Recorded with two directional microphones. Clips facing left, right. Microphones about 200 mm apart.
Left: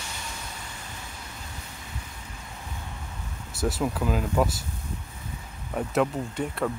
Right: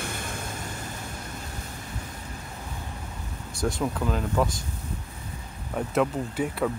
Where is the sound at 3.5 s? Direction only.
5° left (ahead or behind).